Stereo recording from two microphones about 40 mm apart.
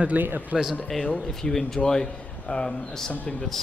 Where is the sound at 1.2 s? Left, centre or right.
Centre.